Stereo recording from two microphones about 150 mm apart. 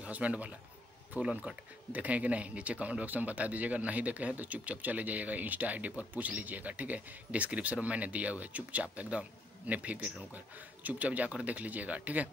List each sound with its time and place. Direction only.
0.0 s a man's voice: 10° right (ahead or behind)